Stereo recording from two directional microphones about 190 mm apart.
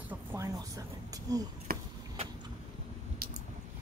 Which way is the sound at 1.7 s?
50° right (ahead or behind).